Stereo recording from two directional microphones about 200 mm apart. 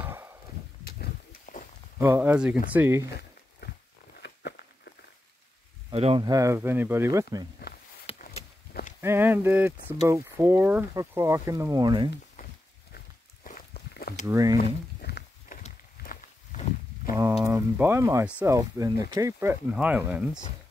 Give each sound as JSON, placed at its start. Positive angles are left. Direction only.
{"t": 0.8, "sound": "pig", "side_deg": 50}
{"t": 2.0, "sound": "speech", "side_deg": -10}
{"t": 3.6, "sound": "a sound", "side_deg": 55}
{"t": 4.2, "sound": "walk", "side_deg": 50}
{"t": 5.9, "sound": "speech", "side_deg": -25}
{"t": 8.2, "sound": "a sound", "side_deg": 40}
{"t": 9.0, "sound": "speech", "side_deg": -10}
{"t": 12.9, "sound": "walk", "side_deg": 40}
{"t": 14.2, "sound": "speech", "side_deg": -15}
{"t": 14.6, "sound": "walk", "side_deg": 50}
{"t": 17.1, "sound": "speech", "side_deg": -15}